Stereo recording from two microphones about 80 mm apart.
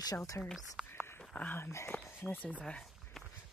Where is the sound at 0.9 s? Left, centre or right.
Left.